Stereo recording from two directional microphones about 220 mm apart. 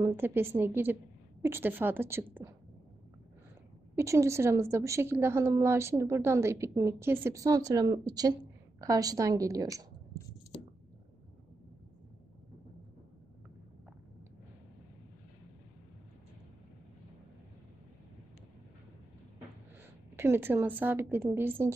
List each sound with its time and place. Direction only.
0.0 s a woman's voice: 10° right (ahead or behind)
3.9 s a woman's voice: 15° right (ahead or behind)
20.2 s a woman's voice: 10° right (ahead or behind)